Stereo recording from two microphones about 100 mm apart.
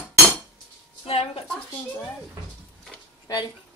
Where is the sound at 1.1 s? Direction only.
80° left.